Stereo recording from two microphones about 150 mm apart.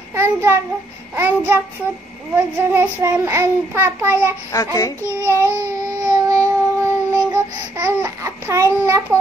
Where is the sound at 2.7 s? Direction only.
20° right (ahead or behind).